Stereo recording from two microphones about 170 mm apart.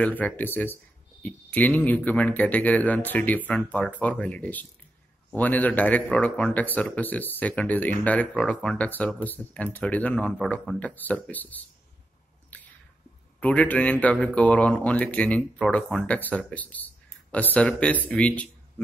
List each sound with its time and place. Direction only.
0.0 s a man's voice: 10° left (ahead or behind)
12.5 s squish: 10° left (ahead or behind)
13.4 s a man's voice: 10° left (ahead or behind)